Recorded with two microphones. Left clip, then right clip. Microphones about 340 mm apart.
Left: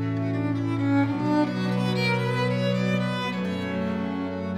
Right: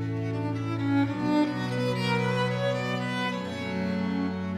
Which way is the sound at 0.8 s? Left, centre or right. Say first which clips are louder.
Left 2 dB; centre.